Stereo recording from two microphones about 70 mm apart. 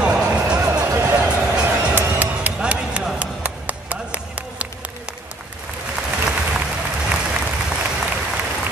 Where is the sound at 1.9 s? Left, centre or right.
Right.